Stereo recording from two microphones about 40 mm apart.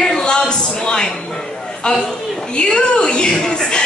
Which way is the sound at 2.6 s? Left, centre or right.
Left.